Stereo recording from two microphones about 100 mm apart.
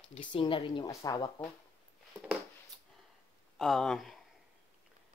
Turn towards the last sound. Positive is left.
turn(degrees=0)  # may be behind; listen again after turning